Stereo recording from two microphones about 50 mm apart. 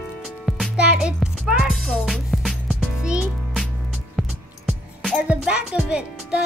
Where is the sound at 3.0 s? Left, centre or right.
Centre.